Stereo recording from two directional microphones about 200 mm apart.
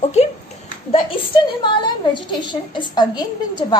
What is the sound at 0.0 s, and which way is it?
Speech, 35° left (ahead or behind).